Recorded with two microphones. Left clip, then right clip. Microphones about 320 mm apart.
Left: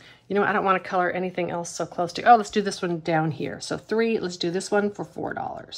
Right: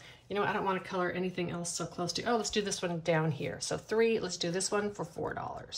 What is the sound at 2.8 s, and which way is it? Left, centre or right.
Speech, centre.